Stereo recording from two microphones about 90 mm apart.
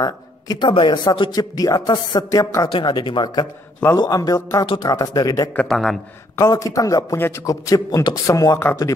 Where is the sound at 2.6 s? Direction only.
70° left (ahead or behind).